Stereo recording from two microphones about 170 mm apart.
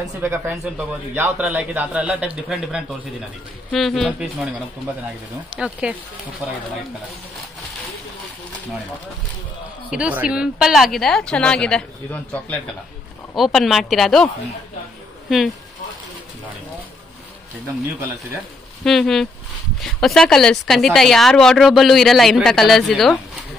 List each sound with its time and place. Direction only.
0.2 s a man's voice: 15° right (ahead or behind)
5.6 s a woman's voice: 5° right (ahead or behind)
9.8 s a woman's voice: 5° right (ahead or behind)
18.9 s a woman's voice: centre (ahead or behind)